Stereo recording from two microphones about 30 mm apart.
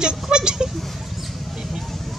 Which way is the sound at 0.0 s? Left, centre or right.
Right.